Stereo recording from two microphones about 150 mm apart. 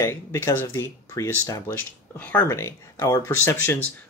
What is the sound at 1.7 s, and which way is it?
Speech, 10° left (ahead or behind).